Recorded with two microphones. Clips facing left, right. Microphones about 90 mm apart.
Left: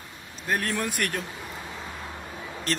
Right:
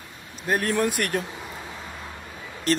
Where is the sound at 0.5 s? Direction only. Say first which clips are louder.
Right 5 dB; 10° right (ahead or behind).